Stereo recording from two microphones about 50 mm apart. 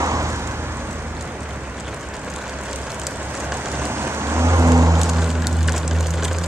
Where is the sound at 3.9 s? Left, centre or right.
Right.